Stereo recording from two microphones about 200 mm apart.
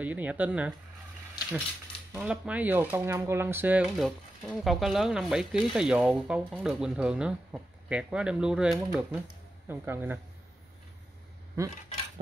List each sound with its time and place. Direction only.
0.0 s speech: 10° right (ahead or behind)
2.1 s speech: 5° right (ahead or behind)
11.6 s speech: 15° right (ahead or behind)